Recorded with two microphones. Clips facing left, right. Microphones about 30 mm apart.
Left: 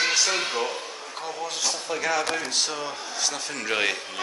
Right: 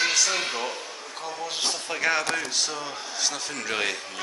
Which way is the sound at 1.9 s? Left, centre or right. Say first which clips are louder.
Right 1 dB; right.